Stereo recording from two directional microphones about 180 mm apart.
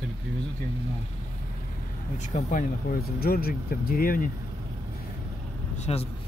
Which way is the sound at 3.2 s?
55° left (ahead or behind).